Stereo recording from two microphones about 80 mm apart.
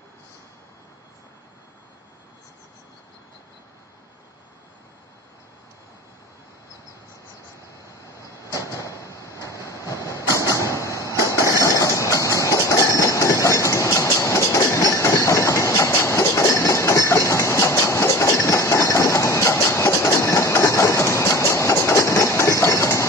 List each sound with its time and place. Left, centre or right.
8.2 s train: left
10.0 s vehicle: left
10.4 s vehicle: right
10.8 s a sound: left
11.4 s train: left